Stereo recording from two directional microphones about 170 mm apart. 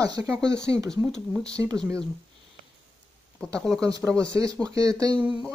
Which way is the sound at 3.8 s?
20° right (ahead or behind).